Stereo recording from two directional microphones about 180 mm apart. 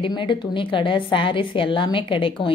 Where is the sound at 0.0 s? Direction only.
25° left (ahead or behind).